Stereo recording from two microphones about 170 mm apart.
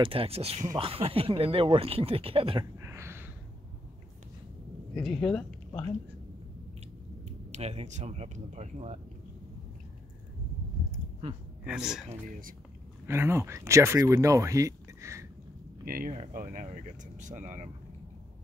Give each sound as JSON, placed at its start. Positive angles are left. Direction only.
{"t": 0.0, "sound": "speech", "side_deg": -35}
{"t": 2.8, "sound": "a sound", "side_deg": -15}
{"t": 4.9, "sound": "speech", "side_deg": 5}
{"t": 7.2, "sound": "speech", "side_deg": -40}
{"t": 11.6, "sound": "speech", "side_deg": -5}
{"t": 12.1, "sound": "speech", "side_deg": -55}
{"t": 13.0, "sound": "speech", "side_deg": -15}
{"t": 15.8, "sound": "speech", "side_deg": -55}
{"t": 16.1, "sound": "speech", "side_deg": -45}